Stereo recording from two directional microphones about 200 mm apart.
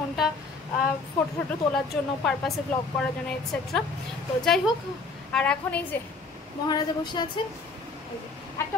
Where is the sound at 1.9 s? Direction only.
5° left (ahead or behind).